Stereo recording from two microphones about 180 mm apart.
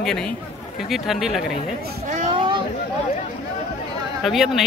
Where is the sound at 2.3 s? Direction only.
30° right (ahead or behind).